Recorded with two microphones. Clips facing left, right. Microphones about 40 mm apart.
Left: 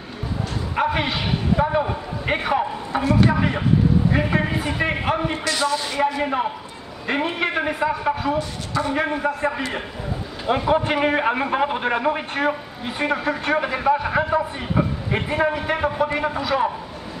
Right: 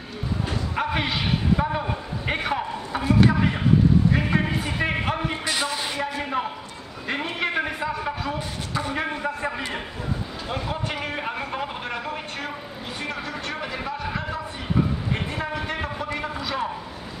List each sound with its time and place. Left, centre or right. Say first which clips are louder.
0.7 s a sound: left 4 dB; centre
3.3 s a man's voice: left 1 dB; centre
5.4 s a man's voice: left 4 dB; centre
5.9 s a man's voice: left 7 dB; centre
10.7 s a man's voice: left 10 dB; left
15.5 s a man's voice: left 6 dB; centre